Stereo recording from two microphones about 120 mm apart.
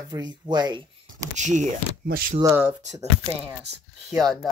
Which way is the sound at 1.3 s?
90° right.